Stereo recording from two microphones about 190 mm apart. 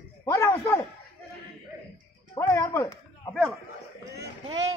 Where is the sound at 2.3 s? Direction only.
15° left (ahead or behind).